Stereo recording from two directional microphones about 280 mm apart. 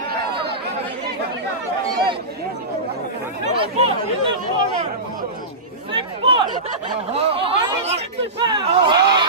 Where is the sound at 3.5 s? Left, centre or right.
Centre.